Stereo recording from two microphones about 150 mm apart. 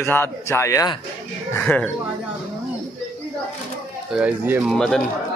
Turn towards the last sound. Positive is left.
turn(degrees=5)  # may be behind; listen again after turning